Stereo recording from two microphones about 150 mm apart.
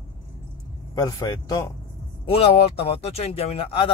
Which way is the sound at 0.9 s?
25° left (ahead or behind).